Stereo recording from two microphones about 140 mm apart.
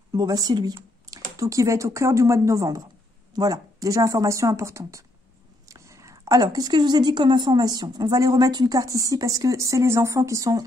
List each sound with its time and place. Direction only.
0.1 s speech: 30° right (ahead or behind)